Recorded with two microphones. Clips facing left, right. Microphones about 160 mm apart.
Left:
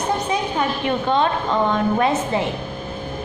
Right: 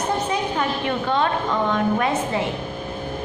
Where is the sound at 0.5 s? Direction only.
20° left (ahead or behind).